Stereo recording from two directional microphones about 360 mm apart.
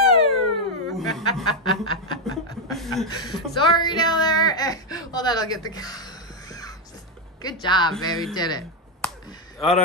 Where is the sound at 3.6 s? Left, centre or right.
Centre.